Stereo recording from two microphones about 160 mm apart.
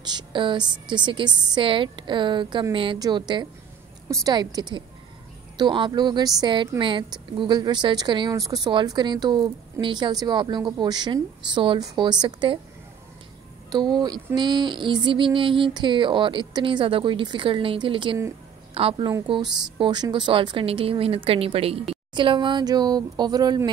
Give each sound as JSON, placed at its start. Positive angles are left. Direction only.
{"t": 0.0, "sound": "a woman's voice", "side_deg": -30}
{"t": 13.7, "sound": "a woman's voice", "side_deg": -25}
{"t": 14.3, "sound": "female singing", "side_deg": -30}
{"t": 19.2, "sound": "a woman's voice", "side_deg": -30}